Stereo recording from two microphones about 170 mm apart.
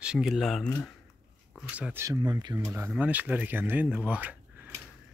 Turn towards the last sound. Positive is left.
turn(degrees=-10)  # may be behind; listen again after turning